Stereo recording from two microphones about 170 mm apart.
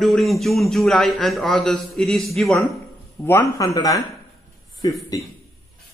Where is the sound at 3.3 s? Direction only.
15° left (ahead or behind).